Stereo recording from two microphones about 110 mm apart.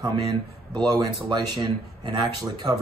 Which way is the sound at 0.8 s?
40° right (ahead or behind).